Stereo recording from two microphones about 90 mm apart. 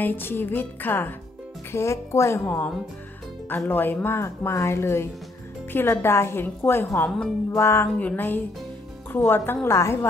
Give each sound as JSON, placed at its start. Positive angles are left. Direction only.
{"t": 0.0, "sound": "speech", "side_deg": 25}